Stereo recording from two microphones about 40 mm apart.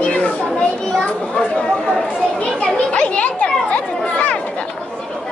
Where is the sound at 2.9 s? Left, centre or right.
Left.